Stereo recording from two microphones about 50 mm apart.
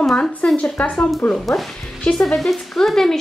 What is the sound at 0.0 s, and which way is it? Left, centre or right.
Speech, centre.